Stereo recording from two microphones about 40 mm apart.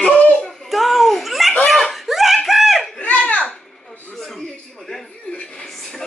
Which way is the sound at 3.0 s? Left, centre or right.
Left.